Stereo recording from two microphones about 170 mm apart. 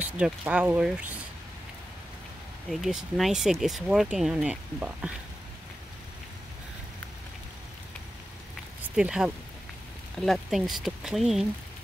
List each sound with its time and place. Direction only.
0.2 s speech: 5° right (ahead or behind)
2.7 s speech: centre (ahead or behind)
8.8 s speech: 5° right (ahead or behind)